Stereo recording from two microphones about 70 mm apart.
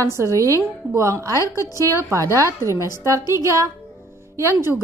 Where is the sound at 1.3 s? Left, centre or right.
Left.